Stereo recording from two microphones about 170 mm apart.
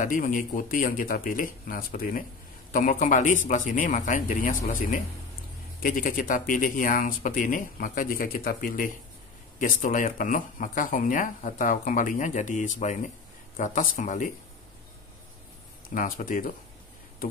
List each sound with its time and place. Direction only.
0.0 s speech: 50° left (ahead or behind)
15.9 s speech: 55° left (ahead or behind)